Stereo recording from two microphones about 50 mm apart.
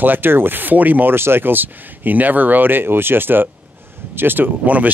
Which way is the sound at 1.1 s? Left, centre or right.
Right.